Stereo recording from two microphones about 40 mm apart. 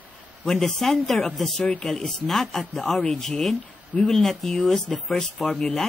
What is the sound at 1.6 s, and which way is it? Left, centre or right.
Speech, centre.